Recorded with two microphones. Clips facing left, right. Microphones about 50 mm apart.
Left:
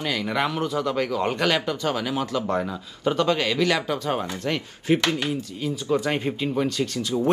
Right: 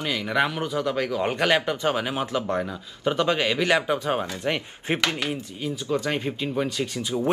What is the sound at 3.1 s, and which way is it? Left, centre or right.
Speech, centre.